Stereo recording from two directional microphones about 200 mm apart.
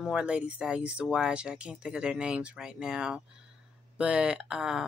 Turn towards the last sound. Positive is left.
turn(degrees=-5)  # may be behind; listen again after turning